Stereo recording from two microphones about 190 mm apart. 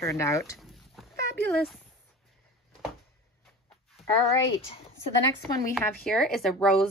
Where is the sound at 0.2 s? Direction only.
15° left (ahead or behind).